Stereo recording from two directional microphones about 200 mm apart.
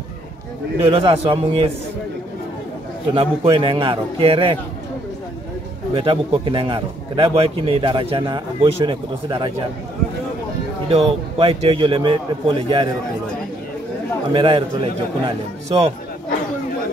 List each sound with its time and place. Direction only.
0.7 s a man's voice: 30° right (ahead or behind)
3.2 s a man's voice: 25° right (ahead or behind)
5.9 s a man's voice: 25° right (ahead or behind)
10.9 s a man's voice: 30° right (ahead or behind)
14.3 s a man's voice: 25° right (ahead or behind)